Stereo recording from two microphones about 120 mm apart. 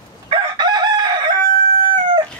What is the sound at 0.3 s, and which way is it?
Chicken, 40° right (ahead or behind).